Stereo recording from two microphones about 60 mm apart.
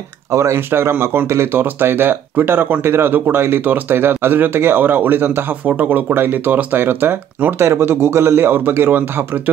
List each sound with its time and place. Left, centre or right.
0.3 s speech: right
0.7 s speech: right